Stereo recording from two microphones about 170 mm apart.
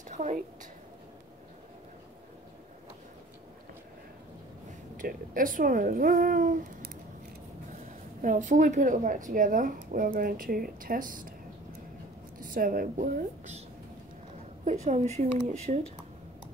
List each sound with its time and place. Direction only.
0.1 s a sound: 45° right (ahead or behind)
5.0 s speech: 55° right (ahead or behind)
8.2 s speech: 45° right (ahead or behind)
12.4 s a woman's voice: 55° right (ahead or behind)
14.6 s speech: 45° right (ahead or behind)